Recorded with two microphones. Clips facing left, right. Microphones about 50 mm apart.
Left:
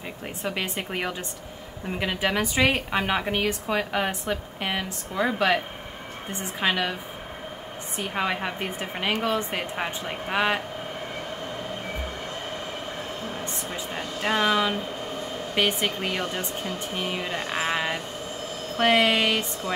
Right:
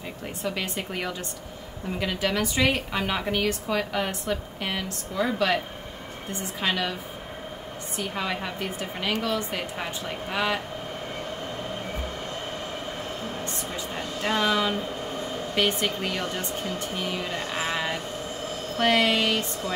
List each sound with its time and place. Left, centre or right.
0.4 s a woman's voice: centre
6.6 s a woman's voice: left
8.0 s a woman's voice: left
13.9 s a woman's voice: centre